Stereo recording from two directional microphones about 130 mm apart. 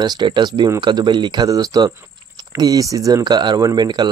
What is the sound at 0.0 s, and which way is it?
Speech, 35° right (ahead or behind).